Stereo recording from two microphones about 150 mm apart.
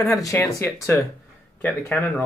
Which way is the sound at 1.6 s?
15° left (ahead or behind).